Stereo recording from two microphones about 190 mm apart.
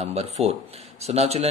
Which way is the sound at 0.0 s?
35° right (ahead or behind).